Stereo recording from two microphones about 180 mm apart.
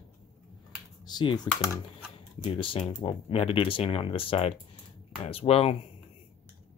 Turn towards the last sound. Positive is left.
turn(degrees=30)  # may be behind; listen again after turning